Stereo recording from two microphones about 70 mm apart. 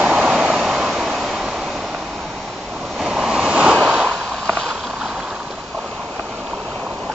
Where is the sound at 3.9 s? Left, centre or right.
Centre.